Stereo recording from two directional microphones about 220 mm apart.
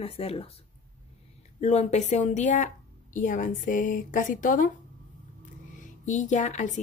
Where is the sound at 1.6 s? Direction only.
30° left (ahead or behind).